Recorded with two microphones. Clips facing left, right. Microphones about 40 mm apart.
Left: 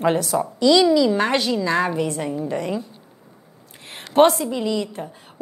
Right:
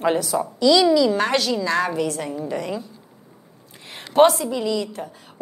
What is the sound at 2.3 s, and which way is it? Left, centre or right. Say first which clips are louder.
Speech: left 2 dB; left.